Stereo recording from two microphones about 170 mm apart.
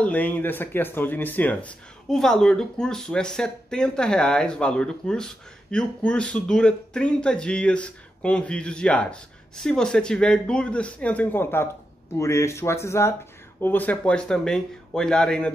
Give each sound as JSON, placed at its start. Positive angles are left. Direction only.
{"t": 0.0, "sound": "speech", "side_deg": 10}